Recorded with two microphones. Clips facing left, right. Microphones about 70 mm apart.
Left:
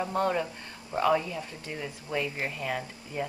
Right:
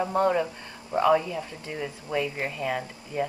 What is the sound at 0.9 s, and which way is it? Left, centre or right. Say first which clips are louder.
Speech: right 4 dB; centre.